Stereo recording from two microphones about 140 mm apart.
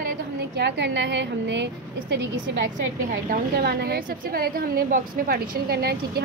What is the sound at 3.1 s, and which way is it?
A woman's voice, 85° right.